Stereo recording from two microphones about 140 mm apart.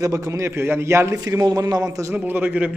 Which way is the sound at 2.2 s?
10° right (ahead or behind).